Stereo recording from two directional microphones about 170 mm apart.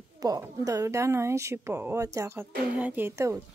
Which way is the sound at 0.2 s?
20° right (ahead or behind).